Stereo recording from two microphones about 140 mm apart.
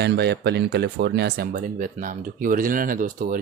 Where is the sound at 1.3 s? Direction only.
80° right.